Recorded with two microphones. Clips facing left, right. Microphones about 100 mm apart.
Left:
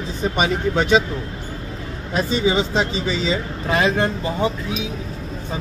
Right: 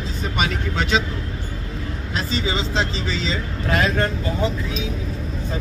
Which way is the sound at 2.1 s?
20° left (ahead or behind).